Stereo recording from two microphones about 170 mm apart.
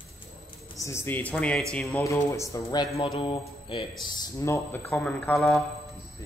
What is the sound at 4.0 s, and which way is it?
Speech, 20° left (ahead or behind).